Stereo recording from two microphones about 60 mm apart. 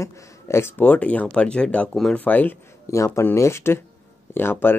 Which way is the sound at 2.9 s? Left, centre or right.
Left.